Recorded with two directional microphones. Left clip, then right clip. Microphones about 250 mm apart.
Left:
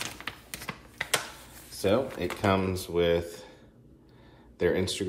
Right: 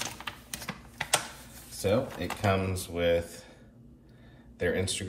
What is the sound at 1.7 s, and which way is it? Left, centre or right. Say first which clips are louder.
Speech: left 2 dB; left.